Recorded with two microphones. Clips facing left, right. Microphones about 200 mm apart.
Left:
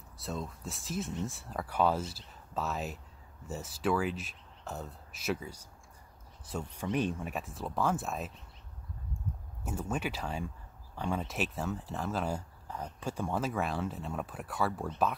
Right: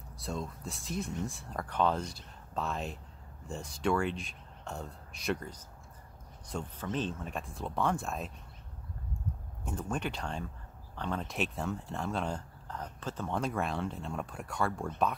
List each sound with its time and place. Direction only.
0.2 s speech: centre (ahead or behind)
7.3 s speech: 5° left (ahead or behind)
9.7 s speech: 5° left (ahead or behind)